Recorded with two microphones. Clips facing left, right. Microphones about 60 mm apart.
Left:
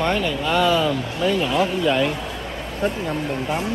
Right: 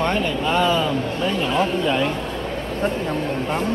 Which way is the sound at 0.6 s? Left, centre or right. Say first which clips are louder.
Even; centre.